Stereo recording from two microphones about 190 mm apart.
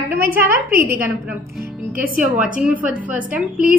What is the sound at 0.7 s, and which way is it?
Speech, 50° right (ahead or behind).